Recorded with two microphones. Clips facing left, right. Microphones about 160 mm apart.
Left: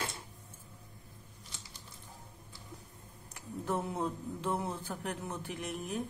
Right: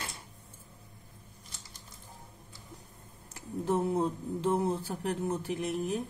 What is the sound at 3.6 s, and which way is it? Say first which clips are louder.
Speech: right 6 dB; 35° right (ahead or behind).